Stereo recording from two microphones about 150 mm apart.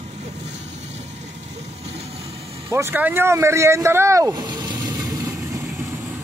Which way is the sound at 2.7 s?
15° right (ahead or behind).